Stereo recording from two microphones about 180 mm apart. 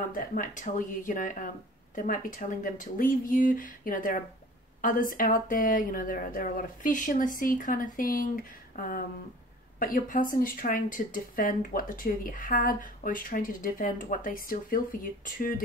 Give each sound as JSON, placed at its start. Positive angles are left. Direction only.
{"t": 0.1, "sound": "speech", "side_deg": 50}
{"t": 8.7, "sound": "a sound", "side_deg": 50}
{"t": 9.8, "sound": "speech", "side_deg": 50}